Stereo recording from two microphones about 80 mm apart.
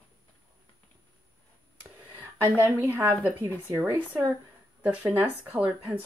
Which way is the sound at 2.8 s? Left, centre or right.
Right.